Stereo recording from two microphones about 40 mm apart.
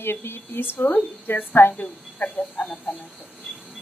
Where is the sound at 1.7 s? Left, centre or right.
Left.